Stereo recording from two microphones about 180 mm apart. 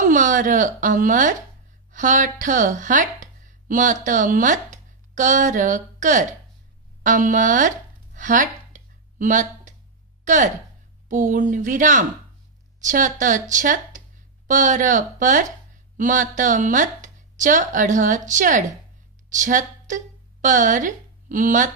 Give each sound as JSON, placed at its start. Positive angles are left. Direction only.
{"t": 0.1, "sound": "a woman's voice", "side_deg": -45}
{"t": 8.1, "sound": "a sound", "side_deg": -45}
{"t": 10.2, "sound": "a woman's voice", "side_deg": -45}